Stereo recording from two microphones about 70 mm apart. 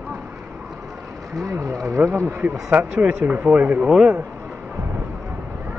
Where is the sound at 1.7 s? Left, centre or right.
Right.